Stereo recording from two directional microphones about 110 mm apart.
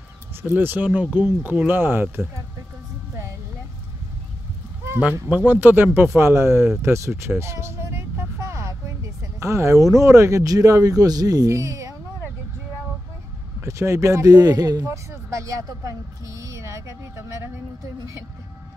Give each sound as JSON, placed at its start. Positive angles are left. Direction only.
{"t": 0.3, "sound": "speech", "side_deg": -20}
{"t": 5.3, "sound": "speech", "side_deg": -15}
{"t": 13.6, "sound": "speech", "side_deg": -25}